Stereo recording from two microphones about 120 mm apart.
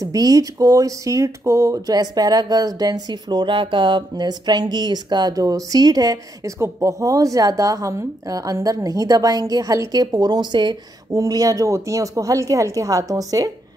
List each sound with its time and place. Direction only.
0.0 s speech: 30° right (ahead or behind)